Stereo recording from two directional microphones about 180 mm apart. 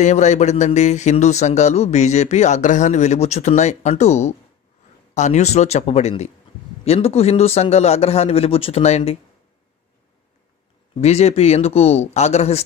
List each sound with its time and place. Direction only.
0.0 s speech: 40° left (ahead or behind)
11.0 s speech: 35° left (ahead or behind)